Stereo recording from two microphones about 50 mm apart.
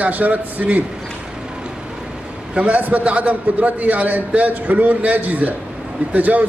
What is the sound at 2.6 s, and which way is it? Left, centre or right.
A man's voice, right.